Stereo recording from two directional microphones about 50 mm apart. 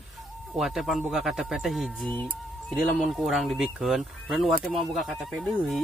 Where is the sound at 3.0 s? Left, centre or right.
Centre.